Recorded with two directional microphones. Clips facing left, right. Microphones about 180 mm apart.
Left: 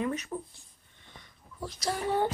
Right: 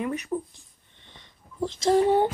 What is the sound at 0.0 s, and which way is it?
Speech, 15° right (ahead or behind).